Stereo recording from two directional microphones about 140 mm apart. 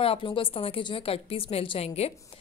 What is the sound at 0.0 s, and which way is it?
A woman's voice, 40° left (ahead or behind).